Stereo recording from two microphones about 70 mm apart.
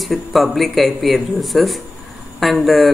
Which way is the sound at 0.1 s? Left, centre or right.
Centre.